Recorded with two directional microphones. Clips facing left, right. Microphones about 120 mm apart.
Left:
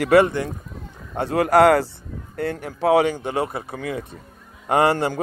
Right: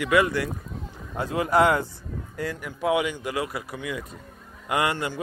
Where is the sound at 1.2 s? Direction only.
70° left (ahead or behind).